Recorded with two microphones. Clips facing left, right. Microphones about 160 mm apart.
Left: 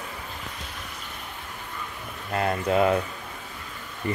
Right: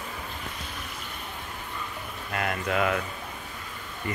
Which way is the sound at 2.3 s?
30° left (ahead or behind).